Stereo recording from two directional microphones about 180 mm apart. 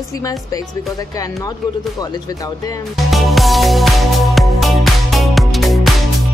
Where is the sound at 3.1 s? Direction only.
Centre (ahead or behind).